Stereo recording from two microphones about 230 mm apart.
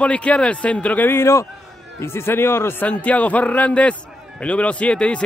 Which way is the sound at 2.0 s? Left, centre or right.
Centre.